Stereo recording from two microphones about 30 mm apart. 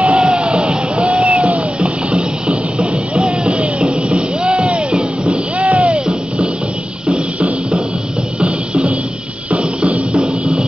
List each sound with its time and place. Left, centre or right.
0.0 s music: right
5.9 s music: right